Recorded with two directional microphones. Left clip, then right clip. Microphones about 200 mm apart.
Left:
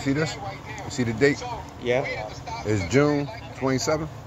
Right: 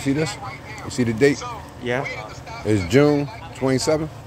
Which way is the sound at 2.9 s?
50° right (ahead or behind).